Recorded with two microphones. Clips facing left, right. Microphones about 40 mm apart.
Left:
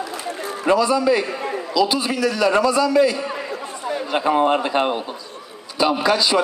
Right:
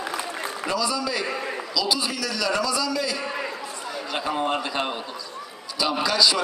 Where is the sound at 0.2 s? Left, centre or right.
Right.